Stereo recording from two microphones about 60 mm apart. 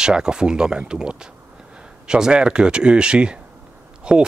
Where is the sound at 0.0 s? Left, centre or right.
Centre.